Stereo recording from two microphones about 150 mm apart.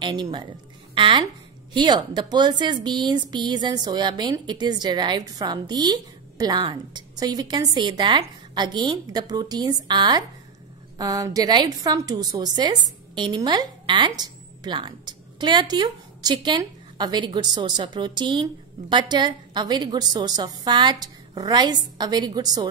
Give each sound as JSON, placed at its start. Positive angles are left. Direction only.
{"t": 0.0, "sound": "a woman's voice", "side_deg": -30}